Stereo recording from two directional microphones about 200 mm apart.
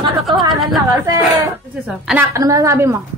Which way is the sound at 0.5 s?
Centre (ahead or behind).